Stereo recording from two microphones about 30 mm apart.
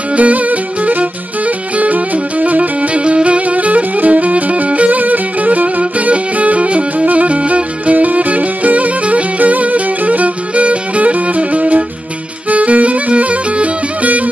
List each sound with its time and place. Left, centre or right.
0.1 s music: right
2.9 s music: right